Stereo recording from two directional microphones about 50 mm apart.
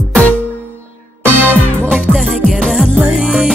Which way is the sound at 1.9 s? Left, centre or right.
Centre.